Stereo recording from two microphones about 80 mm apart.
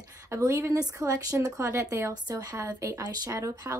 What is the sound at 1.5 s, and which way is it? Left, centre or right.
Speech, right.